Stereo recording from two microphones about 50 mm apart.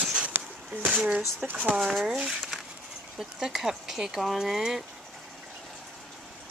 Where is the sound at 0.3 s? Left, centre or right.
Right.